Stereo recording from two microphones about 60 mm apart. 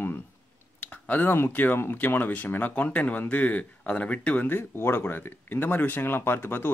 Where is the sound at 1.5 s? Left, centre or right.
Left.